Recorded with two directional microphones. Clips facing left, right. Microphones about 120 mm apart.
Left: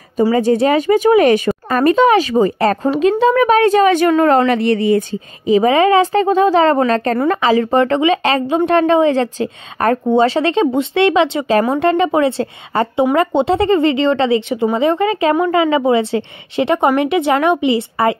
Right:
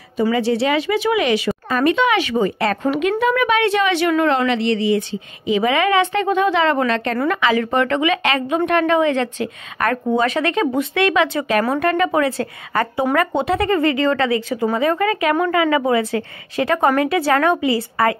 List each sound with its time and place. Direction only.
0.2 s a woman's voice: 40° left (ahead or behind); by 18.1 s 25° left (ahead or behind)